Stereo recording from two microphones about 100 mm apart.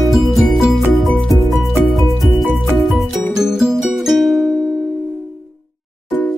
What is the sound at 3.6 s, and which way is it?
Music, 5° right (ahead or behind).